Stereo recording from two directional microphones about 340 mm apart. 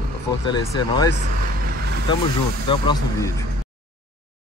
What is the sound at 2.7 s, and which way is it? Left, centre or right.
Speech, centre.